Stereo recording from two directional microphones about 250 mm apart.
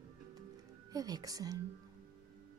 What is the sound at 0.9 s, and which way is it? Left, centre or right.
Speech, centre.